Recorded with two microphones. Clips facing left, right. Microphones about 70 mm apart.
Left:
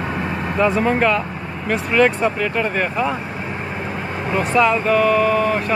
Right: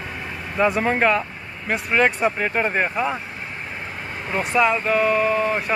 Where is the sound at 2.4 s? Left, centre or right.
Right.